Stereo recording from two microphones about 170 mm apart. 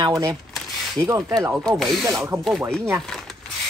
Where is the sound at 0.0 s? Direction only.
20° right (ahead or behind).